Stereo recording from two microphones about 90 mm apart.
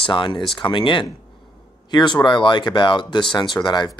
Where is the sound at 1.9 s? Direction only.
55° left (ahead or behind).